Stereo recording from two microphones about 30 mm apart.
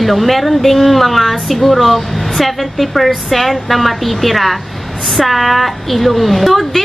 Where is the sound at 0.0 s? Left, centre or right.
Centre.